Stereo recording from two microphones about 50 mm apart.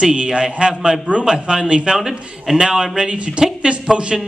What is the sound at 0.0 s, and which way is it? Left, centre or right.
A man's voice, right.